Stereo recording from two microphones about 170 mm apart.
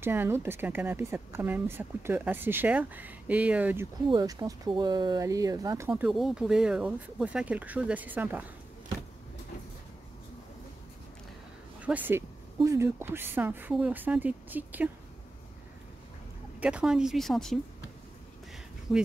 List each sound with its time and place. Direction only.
0.0 s speech: 15° right (ahead or behind)
4.1 s speech: 25° right (ahead or behind)
5.9 s speech: 5° right (ahead or behind)
11.8 s speech: 10° right (ahead or behind)
16.5 s speech: 5° right (ahead or behind)
18.9 s speech: centre (ahead or behind)